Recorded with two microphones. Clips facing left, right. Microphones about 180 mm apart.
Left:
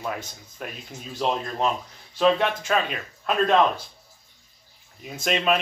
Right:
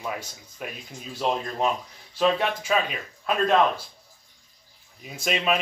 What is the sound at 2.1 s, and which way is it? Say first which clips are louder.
Speech: left 2 dB; 5° right (ahead or behind).